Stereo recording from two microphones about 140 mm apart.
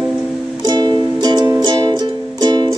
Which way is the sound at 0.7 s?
30° right (ahead or behind).